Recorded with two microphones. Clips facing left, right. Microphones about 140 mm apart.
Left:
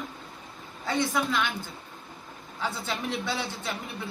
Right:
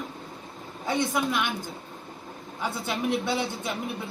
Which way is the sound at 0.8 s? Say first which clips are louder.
Right 1 dB; 20° right (ahead or behind).